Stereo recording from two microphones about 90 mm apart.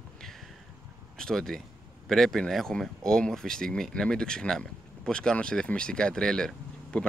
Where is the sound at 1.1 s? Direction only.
5° left (ahead or behind).